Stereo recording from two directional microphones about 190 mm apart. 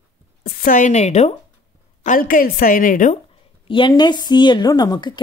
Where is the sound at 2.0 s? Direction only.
45° left (ahead or behind).